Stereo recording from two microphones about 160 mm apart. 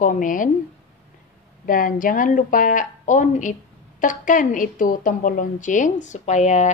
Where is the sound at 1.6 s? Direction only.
60° left (ahead or behind).